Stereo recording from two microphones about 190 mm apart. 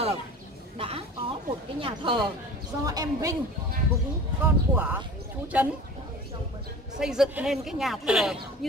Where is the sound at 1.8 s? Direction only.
25° right (ahead or behind).